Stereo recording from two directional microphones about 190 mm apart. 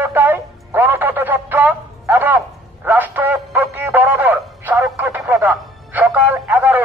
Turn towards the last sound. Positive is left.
turn(degrees=-10)  # may be behind; listen again after turning